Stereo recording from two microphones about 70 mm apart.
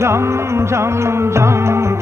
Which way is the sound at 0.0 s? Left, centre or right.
Right.